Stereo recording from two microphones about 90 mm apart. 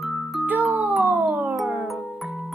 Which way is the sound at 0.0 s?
Centre (ahead or behind).